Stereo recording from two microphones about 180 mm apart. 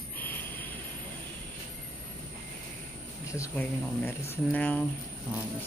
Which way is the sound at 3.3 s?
15° left (ahead or behind).